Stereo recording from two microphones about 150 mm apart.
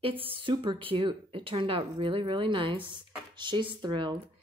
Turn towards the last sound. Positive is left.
turn(degrees=-30)  # may be behind; listen again after turning